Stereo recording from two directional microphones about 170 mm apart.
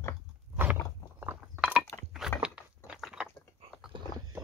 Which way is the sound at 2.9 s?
Centre (ahead or behind).